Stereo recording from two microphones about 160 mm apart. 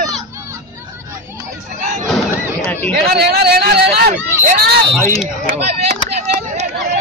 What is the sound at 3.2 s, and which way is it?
Speech, 85° right.